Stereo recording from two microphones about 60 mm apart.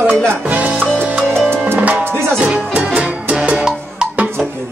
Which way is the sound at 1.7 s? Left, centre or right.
Right.